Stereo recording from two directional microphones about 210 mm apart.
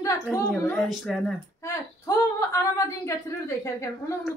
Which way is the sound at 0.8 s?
Centre (ahead or behind).